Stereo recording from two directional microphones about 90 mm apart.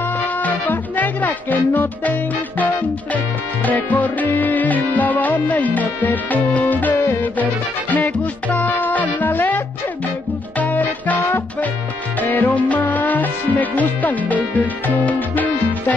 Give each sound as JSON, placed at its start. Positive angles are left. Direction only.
{"t": 0.4, "sound": "speech", "side_deg": 20}
{"t": 3.6, "sound": "music", "side_deg": 20}
{"t": 10.6, "sound": "music", "side_deg": 15}
{"t": 12.2, "sound": "music", "side_deg": 20}
{"t": 15.0, "sound": "speech", "side_deg": 20}